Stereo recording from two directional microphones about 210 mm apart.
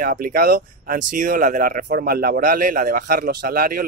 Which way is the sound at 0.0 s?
45° right (ahead or behind).